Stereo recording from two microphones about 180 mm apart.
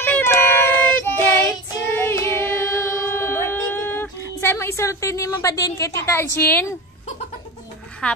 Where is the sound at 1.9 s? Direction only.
15° left (ahead or behind).